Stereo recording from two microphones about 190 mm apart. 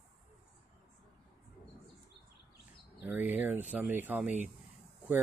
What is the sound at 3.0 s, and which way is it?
Speech, 10° right (ahead or behind).